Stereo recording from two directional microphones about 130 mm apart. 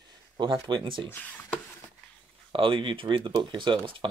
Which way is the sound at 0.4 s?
40° right (ahead or behind).